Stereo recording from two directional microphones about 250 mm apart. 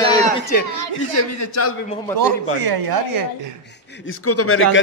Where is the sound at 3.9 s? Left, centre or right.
Left.